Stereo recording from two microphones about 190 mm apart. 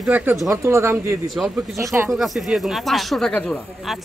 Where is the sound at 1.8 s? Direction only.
15° right (ahead or behind).